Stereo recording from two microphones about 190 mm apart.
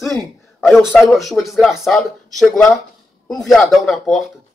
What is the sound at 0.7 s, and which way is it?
A man's voice, centre (ahead or behind).